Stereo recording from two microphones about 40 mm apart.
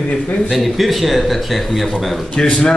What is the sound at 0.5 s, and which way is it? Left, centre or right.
Speech, centre.